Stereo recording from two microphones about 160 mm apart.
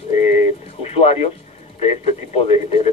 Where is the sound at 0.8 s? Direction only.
40° left (ahead or behind).